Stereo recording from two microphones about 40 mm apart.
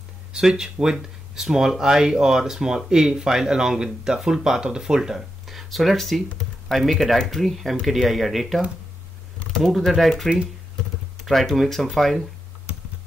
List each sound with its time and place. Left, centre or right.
0.3 s speech: centre
5.5 s speech: centre